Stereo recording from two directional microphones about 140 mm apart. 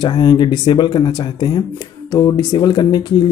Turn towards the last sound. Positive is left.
turn(degrees=30)  # may be behind; listen again after turning